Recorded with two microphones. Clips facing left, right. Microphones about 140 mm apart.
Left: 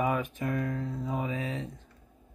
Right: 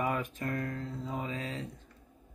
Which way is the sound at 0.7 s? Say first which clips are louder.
Left 4 dB; 20° left (ahead or behind).